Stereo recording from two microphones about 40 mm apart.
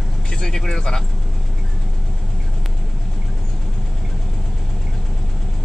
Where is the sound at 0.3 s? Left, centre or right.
Centre.